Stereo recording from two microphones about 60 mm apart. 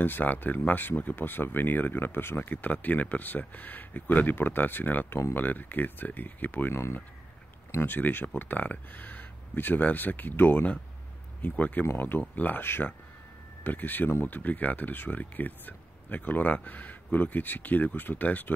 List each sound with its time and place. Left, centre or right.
0.0 s speech: left
6.7 s speech: left
7.8 s speech: left